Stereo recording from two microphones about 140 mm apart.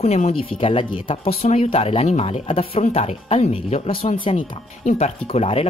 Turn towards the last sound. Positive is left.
turn(degrees=45)  # may be behind; listen again after turning